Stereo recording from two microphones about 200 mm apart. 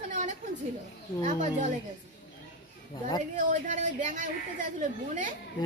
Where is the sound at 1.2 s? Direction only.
35° right (ahead or behind).